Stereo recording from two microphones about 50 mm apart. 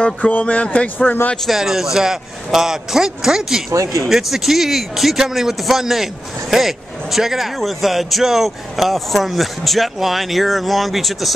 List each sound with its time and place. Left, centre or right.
0.0 s speech: left
1.4 s a man's voice: centre
3.7 s a man's voice: right
4.1 s a man's voice: centre